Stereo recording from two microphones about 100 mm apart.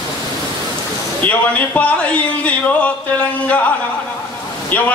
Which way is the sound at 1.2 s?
15° left (ahead or behind).